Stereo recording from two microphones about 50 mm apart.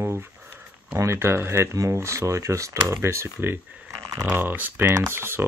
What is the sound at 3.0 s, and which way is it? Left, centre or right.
Speech, right.